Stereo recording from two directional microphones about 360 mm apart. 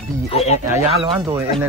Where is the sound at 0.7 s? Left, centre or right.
Centre.